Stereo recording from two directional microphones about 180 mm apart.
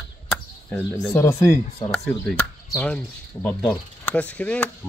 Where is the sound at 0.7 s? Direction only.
15° left (ahead or behind).